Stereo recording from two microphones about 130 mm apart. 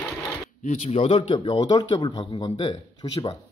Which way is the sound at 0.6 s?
60° left (ahead or behind).